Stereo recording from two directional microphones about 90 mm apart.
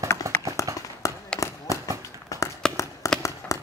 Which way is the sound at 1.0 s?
35° left (ahead or behind).